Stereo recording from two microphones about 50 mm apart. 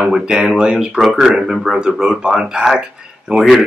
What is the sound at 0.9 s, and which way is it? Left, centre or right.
Speech, centre.